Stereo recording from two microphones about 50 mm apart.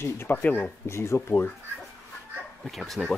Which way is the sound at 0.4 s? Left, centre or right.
Left.